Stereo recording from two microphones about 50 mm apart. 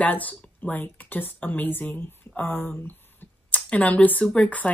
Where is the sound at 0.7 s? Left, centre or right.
Left.